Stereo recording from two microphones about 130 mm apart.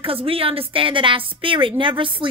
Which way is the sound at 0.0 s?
45° right (ahead or behind).